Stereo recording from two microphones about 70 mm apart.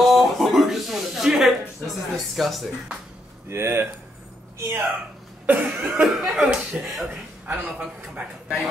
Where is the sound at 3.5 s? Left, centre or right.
Right.